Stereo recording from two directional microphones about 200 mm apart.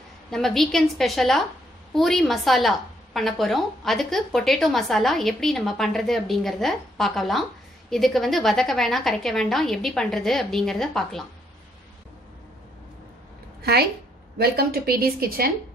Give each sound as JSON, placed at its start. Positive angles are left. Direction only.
{"t": 0.3, "sound": "a woman's voice", "side_deg": 0}
{"t": 13.6, "sound": "a sound", "side_deg": -50}
{"t": 14.4, "sound": "a woman's voice", "side_deg": -50}